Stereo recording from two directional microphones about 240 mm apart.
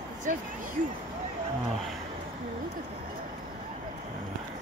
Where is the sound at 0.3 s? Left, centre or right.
Right.